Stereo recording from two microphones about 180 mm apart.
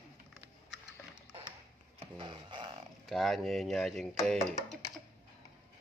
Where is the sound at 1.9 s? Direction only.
30° right (ahead or behind).